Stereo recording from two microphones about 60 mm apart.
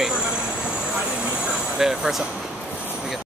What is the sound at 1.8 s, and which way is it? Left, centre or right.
Speech, centre.